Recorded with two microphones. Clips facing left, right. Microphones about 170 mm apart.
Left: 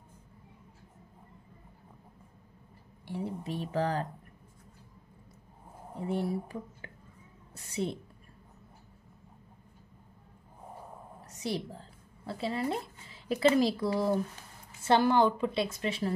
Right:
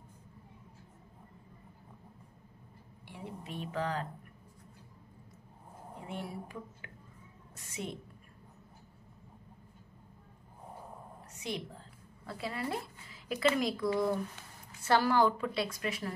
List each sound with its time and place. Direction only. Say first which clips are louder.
3.1 s speech: left 8 dB; 35° left (ahead or behind)
5.9 s a woman's voice: left 10 dB; 35° left (ahead or behind)
11.3 s a woman's voice: left 5 dB; 35° left (ahead or behind)
14.8 s a woman's voice: left 3 dB; 25° left (ahead or behind)